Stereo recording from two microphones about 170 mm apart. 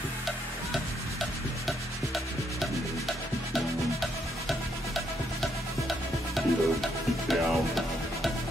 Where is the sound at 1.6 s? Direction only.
Centre (ahead or behind).